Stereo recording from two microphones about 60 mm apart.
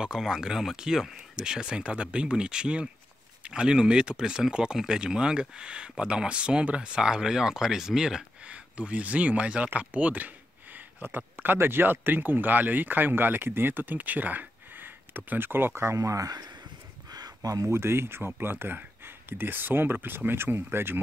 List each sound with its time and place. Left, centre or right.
0.0 s speech: centre
8.5 s speech: right
16.0 s speech: right
17.1 s a sound: right
17.6 s speech: right